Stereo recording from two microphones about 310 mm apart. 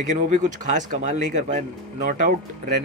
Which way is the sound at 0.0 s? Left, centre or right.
Right.